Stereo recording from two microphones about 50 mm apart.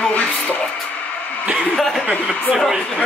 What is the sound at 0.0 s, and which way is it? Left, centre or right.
Music, left.